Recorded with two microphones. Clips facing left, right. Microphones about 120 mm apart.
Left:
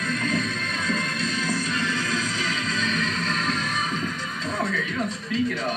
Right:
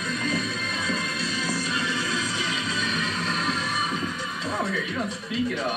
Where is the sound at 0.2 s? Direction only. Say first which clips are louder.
Left 2 dB; 5° right (ahead or behind).